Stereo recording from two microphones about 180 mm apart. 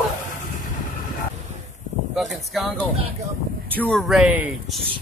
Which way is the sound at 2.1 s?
Centre (ahead or behind).